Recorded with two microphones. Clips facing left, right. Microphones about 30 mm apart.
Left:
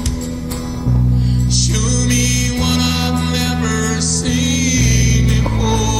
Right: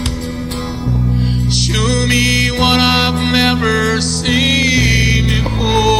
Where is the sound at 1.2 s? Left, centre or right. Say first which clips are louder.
Right 1 dB; right.